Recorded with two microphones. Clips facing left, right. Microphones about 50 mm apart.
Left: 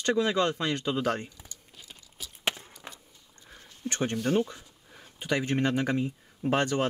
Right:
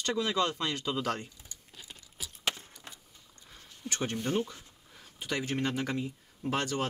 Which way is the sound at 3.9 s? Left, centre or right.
Left.